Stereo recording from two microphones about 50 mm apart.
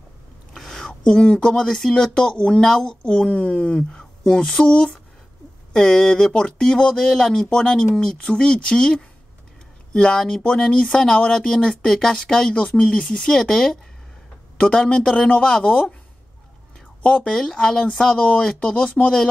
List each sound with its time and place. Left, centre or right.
0.6 s a sound: centre
1.5 s speech: centre
7.1 s speech: centre
12.5 s speech: left; by 13.7 s centre
14.6 s speech: left
17.0 s speech: left
17.3 s speech: centre
18.1 s speech: left